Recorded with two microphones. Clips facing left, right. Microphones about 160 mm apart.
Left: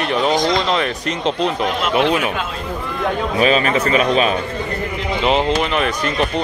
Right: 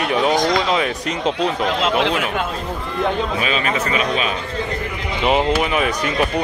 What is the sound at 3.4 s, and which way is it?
Speech, 40° left (ahead or behind).